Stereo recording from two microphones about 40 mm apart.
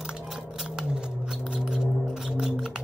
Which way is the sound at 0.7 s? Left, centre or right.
Right.